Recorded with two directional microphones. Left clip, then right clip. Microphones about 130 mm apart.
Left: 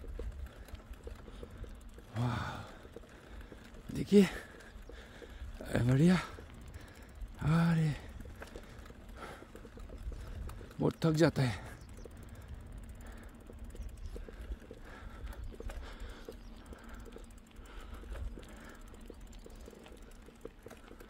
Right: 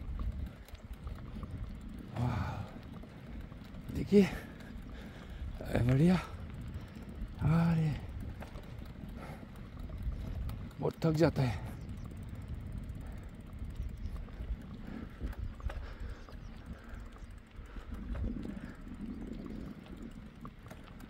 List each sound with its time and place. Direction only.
2.1 s gasp: 20° left (ahead or behind)
3.9 s speech: 20° left (ahead or behind)
5.6 s speech: 5° left (ahead or behind)
7.4 s a sound: 20° left (ahead or behind)
10.8 s speech: 20° left (ahead or behind)